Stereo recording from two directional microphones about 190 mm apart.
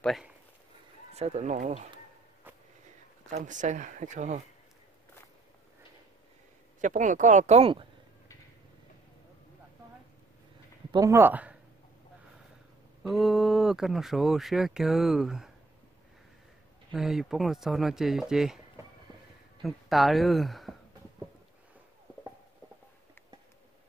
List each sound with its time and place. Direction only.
0.0 s speech: centre (ahead or behind)
1.1 s speech: 35° right (ahead or behind)
3.3 s speech: 40° right (ahead or behind)
6.8 s speech: 40° right (ahead or behind)
10.9 s speech: 20° right (ahead or behind)
13.0 s speech: centre (ahead or behind)
16.9 s speech: centre (ahead or behind)
19.6 s speech: centre (ahead or behind)